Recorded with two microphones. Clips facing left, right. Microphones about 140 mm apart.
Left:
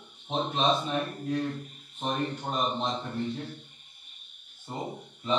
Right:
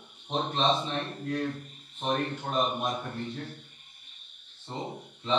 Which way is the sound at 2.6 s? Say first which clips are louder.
Left 3 dB; 10° right (ahead or behind).